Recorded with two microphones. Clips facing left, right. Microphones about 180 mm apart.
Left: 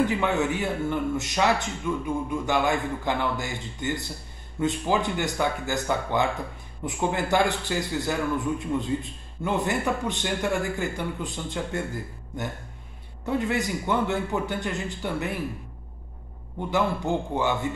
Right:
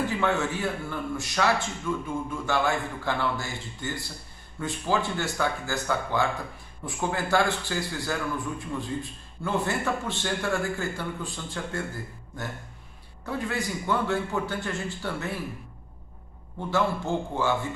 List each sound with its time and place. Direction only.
0.0 s a man's voice: 20° left (ahead or behind)
13.2 s a man's voice: 20° left (ahead or behind)
16.7 s a man's voice: 20° left (ahead or behind)